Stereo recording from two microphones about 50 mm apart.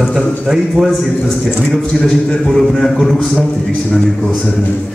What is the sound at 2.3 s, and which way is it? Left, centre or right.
Speech, centre.